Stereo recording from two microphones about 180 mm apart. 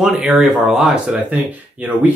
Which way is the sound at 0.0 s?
5° right (ahead or behind).